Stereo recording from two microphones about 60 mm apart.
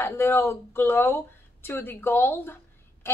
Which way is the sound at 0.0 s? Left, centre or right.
Left.